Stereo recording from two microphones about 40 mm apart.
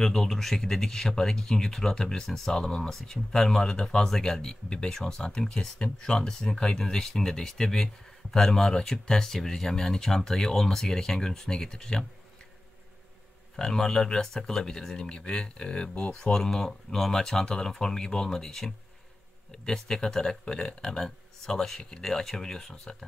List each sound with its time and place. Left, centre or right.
0.0 s speech: centre
13.6 s speech: centre